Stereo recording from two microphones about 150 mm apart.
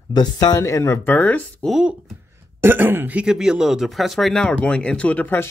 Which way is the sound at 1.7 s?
Centre (ahead or behind).